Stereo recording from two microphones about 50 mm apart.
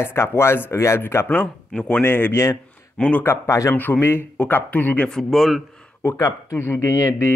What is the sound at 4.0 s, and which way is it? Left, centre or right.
Speech, left.